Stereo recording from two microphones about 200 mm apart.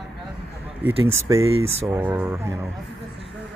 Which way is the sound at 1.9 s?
10° right (ahead or behind).